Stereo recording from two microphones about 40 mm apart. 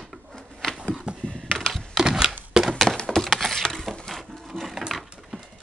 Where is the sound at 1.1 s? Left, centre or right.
Right.